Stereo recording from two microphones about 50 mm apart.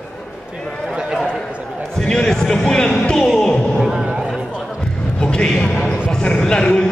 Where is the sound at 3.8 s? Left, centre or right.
Centre.